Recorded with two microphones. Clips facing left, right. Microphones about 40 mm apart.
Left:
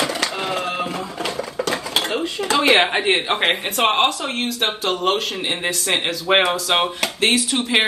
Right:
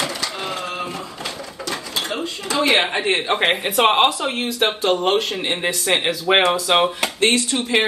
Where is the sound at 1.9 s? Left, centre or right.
Left.